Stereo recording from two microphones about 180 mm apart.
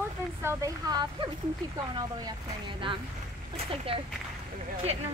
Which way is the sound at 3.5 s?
30° right (ahead or behind).